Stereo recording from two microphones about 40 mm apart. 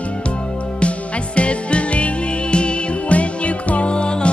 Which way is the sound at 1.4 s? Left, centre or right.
Left.